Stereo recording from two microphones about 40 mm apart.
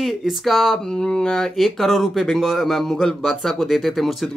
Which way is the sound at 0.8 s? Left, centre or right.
Centre.